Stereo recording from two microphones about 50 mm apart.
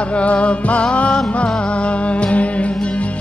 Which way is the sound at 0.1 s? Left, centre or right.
Left.